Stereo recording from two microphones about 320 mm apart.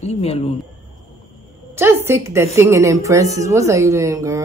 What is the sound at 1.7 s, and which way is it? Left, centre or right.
A woman's voice, centre.